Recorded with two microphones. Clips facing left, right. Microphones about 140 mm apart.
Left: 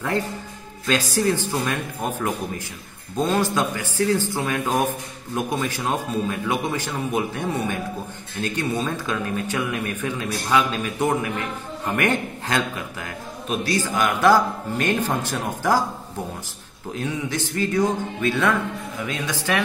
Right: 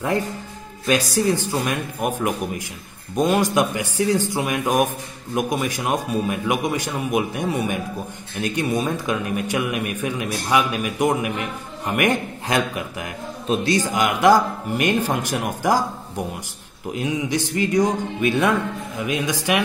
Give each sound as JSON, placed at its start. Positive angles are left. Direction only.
{"t": 0.8, "sound": "speech", "side_deg": -15}